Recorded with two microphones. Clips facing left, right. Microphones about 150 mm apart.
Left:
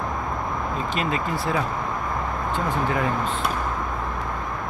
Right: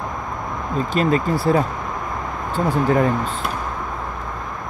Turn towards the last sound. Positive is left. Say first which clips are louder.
# right 6 dB
turn(degrees=-40)  # may be behind; listen again after turning